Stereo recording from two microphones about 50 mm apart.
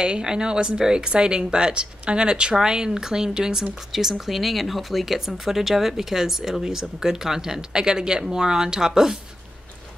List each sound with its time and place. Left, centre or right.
0.0 s speech: centre